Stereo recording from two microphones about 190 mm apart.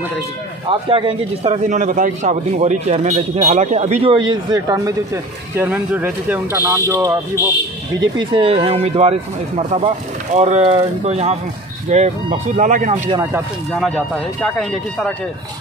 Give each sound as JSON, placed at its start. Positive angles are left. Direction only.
{"t": 0.7, "sound": "a man's voice", "side_deg": -30}
{"t": 8.2, "sound": "speech", "side_deg": -25}
{"t": 13.1, "sound": "speech", "side_deg": -15}
{"t": 13.7, "sound": "speech", "side_deg": 0}